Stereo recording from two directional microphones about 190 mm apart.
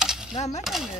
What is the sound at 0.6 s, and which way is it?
Speech, centre (ahead or behind).